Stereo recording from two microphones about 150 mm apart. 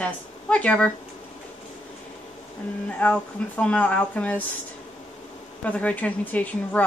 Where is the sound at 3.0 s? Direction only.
5° left (ahead or behind).